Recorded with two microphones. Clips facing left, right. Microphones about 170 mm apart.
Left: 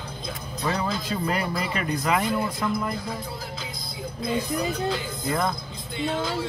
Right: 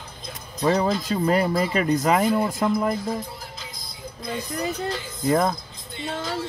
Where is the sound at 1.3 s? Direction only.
45° right (ahead or behind).